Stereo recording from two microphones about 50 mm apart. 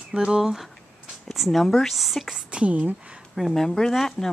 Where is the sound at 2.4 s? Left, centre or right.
Right.